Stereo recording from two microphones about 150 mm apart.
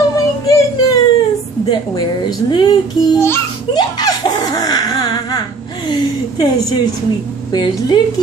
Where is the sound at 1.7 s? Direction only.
30° left (ahead or behind).